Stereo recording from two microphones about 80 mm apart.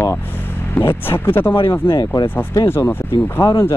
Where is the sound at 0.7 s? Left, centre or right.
Left.